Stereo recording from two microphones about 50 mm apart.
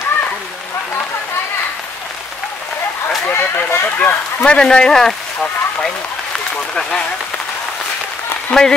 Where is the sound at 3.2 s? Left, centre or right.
Left.